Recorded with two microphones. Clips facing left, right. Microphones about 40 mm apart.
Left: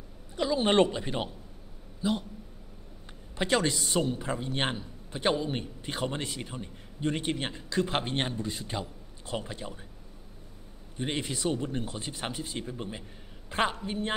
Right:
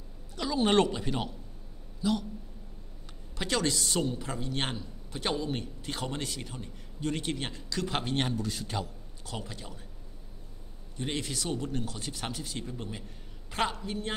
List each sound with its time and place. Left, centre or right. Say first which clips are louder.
0.4 s a man's voice: left 2 dB; left
3.1 s a sound: left 5 dB; left
3.8 s a man's voice: left 2 dB; centre
9.2 s a man's voice: left 5 dB; left
11.0 s a man's voice: left 2 dB; left